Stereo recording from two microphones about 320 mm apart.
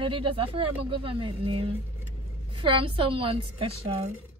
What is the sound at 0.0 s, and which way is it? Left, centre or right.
Speech, centre.